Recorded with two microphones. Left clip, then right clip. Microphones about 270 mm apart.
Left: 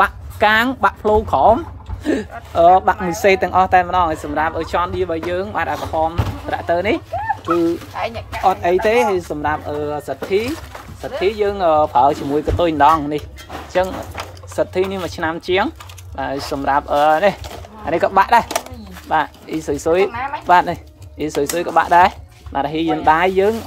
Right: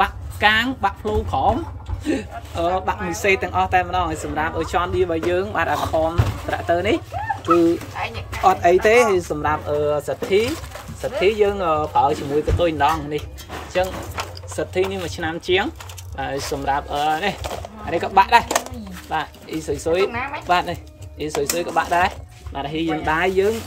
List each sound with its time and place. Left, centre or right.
0.0 s speech: centre
7.4 s speech: centre
8.5 s speech: centre
14.5 s speech: centre